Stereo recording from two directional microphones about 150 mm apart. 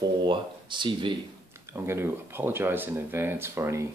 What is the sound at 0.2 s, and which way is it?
Speech, 30° right (ahead or behind).